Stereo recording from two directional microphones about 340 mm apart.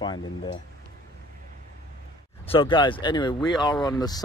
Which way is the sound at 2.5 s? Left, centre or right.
Centre.